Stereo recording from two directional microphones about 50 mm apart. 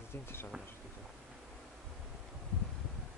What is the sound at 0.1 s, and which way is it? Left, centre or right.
Speech, left.